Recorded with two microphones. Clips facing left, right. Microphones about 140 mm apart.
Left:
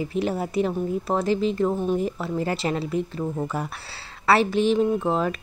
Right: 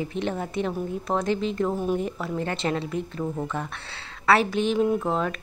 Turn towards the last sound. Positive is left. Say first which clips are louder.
# left 1 dB
turn(degrees=0)  # may be behind; listen again after turning